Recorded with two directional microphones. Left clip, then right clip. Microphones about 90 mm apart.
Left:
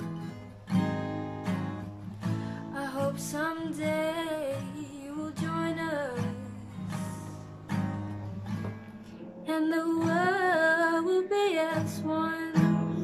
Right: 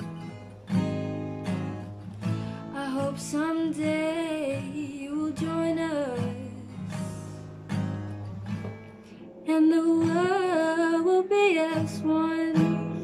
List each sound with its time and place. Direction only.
0.0 s music: centre (ahead or behind)
0.7 s guitar: 10° left (ahead or behind)
2.2 s music: 15° right (ahead or behind)
9.5 s music: 20° right (ahead or behind)